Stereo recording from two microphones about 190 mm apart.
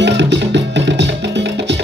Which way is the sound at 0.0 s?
65° right (ahead or behind).